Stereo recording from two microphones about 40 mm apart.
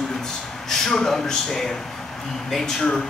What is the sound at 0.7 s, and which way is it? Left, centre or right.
A man's voice, centre.